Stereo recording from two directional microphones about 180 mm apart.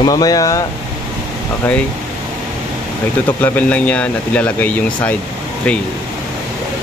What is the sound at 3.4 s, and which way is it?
Speech, 10° left (ahead or behind).